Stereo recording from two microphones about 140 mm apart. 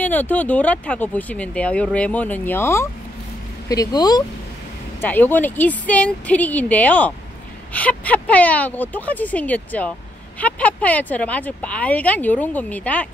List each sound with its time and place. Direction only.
0.0 s speech: 10° left (ahead or behind); by 4.2 s 30° left (ahead or behind)
5.0 s speech: 15° left (ahead or behind)